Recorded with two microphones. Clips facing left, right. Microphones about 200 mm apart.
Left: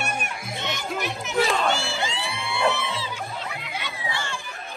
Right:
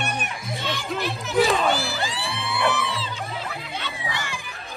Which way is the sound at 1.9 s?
20° left (ahead or behind).